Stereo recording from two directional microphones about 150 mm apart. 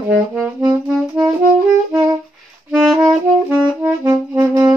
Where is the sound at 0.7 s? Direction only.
5° right (ahead or behind).